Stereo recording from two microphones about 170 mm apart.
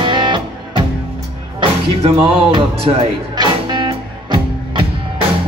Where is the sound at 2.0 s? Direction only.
30° right (ahead or behind).